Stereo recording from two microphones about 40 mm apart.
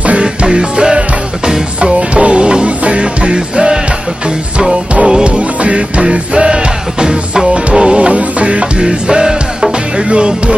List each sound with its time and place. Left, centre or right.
0.2 s music: right
2.0 s music: right
5.0 s music: right
8.8 s music: centre